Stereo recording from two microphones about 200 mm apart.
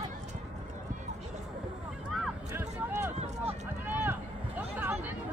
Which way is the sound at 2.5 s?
10° right (ahead or behind).